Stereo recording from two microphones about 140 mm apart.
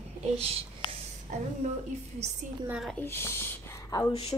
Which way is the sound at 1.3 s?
65° right (ahead or behind).